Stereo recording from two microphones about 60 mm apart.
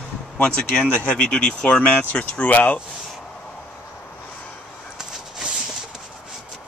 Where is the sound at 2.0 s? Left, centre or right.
Left.